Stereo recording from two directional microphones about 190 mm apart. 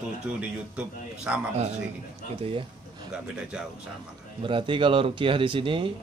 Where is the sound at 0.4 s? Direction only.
5° right (ahead or behind).